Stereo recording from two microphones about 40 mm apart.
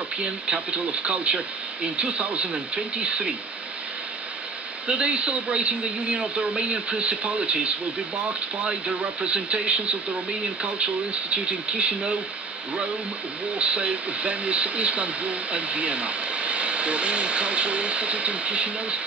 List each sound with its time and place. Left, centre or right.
0.2 s speech: right
4.8 s speech: right
13.6 s speech: right